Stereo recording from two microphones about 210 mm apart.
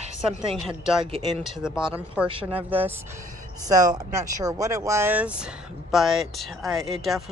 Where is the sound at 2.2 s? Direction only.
5° right (ahead or behind).